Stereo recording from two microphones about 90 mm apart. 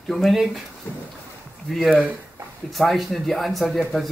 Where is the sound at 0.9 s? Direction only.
20° left (ahead or behind).